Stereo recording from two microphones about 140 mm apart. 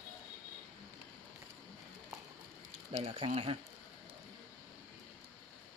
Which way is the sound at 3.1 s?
40° right (ahead or behind).